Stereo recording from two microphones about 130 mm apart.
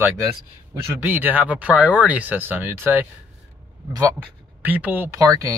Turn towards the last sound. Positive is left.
turn(degrees=-25)  # may be behind; listen again after turning